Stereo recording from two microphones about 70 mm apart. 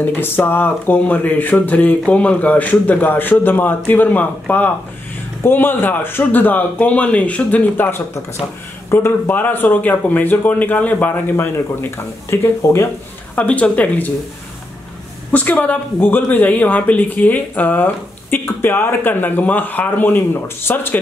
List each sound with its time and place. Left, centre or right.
0.0 s speech: left
11.3 s speech: left
13.4 s speech: centre
15.6 s speech: left